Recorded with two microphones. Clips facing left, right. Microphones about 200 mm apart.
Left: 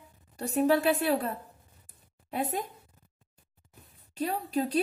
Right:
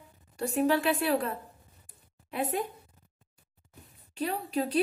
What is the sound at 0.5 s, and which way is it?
Speech, 40° left (ahead or behind).